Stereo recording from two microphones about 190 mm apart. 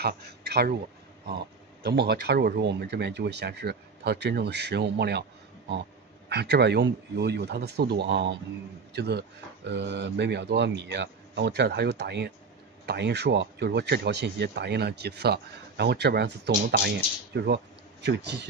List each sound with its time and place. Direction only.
0.0 s speech: 60° right (ahead or behind)
1.8 s speech: 60° right (ahead or behind)
6.2 s speech: 60° right (ahead or behind)